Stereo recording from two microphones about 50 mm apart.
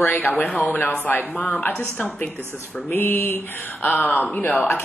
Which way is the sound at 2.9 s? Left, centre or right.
Left.